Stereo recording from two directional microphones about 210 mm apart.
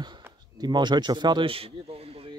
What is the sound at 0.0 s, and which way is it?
A man's voice, 20° right (ahead or behind).